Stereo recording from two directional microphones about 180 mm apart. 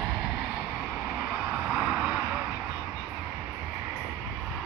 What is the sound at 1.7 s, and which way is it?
Vehicle, 5° right (ahead or behind).